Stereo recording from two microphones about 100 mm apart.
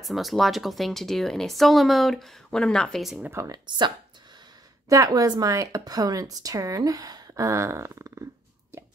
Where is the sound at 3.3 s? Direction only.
30° right (ahead or behind).